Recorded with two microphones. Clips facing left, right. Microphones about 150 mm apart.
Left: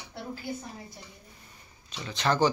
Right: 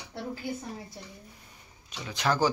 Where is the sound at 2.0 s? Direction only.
10° right (ahead or behind).